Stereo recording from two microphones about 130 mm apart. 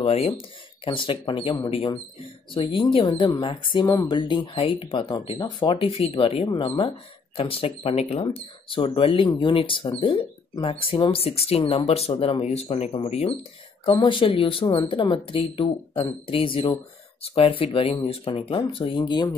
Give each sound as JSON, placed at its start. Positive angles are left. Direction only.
{"t": 0.0, "sound": "speech", "side_deg": 50}
{"t": 8.3, "sound": "speech", "side_deg": 40}
{"t": 13.9, "sound": "speech", "side_deg": 40}